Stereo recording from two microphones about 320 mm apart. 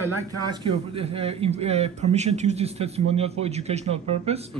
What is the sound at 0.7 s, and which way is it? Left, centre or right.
Speech, centre.